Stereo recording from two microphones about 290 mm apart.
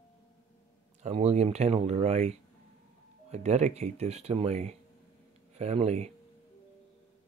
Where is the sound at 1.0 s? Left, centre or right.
Right.